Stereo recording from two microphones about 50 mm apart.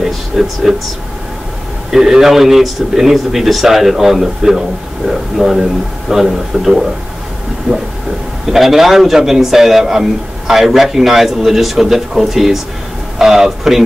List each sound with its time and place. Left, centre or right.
0.0 s speech: centre
1.9 s a man's voice: centre
8.5 s a man's voice: centre